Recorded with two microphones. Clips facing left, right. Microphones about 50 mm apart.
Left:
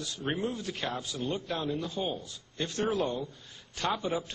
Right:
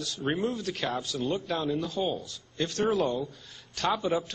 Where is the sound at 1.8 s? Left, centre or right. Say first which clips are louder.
Right 3 dB; left.